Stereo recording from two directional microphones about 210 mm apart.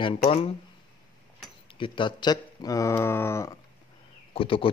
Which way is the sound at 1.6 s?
25° left (ahead or behind).